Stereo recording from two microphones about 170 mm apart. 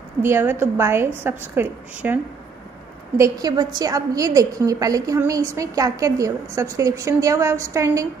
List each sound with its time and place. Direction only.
0.2 s a woman's voice: 15° right (ahead or behind)
3.2 s a woman's voice: 20° right (ahead or behind)